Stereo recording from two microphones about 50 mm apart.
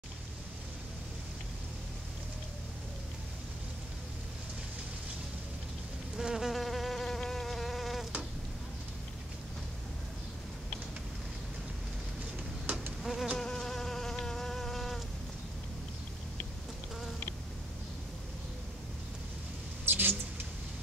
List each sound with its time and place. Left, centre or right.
6.1 s insect: centre
13.0 s insect: centre
13.4 s insect: centre
19.8 s vehicle: right